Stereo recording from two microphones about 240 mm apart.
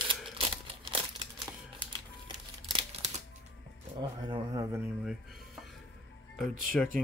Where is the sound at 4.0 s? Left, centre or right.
Centre.